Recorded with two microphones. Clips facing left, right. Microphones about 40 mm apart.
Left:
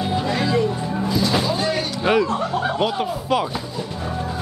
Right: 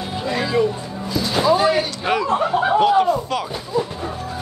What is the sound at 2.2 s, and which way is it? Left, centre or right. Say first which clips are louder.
Speech: right 4 dB; right.